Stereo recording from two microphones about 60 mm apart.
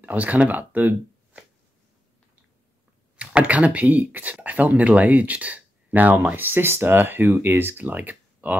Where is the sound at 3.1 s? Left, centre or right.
Centre.